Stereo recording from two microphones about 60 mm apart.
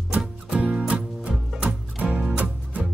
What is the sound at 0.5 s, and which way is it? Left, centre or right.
Music, right.